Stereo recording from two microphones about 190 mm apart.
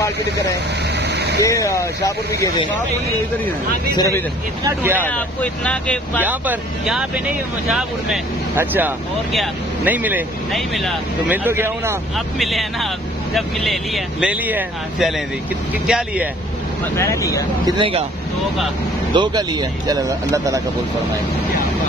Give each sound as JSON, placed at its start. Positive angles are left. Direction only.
{"t": 1.0, "sound": "vehicle", "side_deg": -60}
{"t": 1.4, "sound": "speech", "side_deg": 15}
{"t": 3.9, "sound": "speech", "side_deg": 20}
{"t": 4.6, "sound": "speech", "side_deg": -15}
{"t": 5.0, "sound": "speech", "side_deg": 5}
{"t": 6.2, "sound": "speech", "side_deg": -10}
{"t": 11.3, "sound": "speech", "side_deg": -10}
{"t": 12.4, "sound": "speech", "side_deg": 0}
{"t": 16.9, "sound": "speech", "side_deg": 15}
{"t": 17.6, "sound": "speech", "side_deg": -30}
{"t": 19.1, "sound": "speech", "side_deg": -25}